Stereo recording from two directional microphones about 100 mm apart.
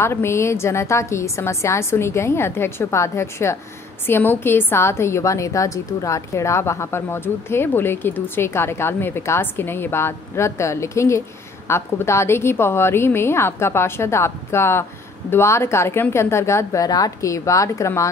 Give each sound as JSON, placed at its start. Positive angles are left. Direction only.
{"t": 0.0, "sound": "a woman's voice", "side_deg": 25}